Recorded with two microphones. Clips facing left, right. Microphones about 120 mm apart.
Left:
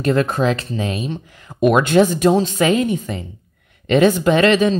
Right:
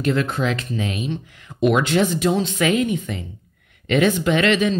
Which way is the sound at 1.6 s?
50° left (ahead or behind).